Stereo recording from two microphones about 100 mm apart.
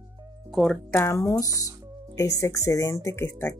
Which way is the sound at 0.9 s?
25° left (ahead or behind).